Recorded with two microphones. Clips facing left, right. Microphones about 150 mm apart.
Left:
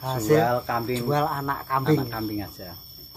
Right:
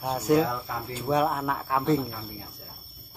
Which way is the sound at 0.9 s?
10° right (ahead or behind).